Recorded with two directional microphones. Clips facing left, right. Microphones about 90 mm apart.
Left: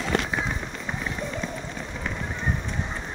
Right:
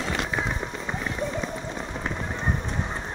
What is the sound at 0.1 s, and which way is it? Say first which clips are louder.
Run: left 4 dB; 65° left (ahead or behind).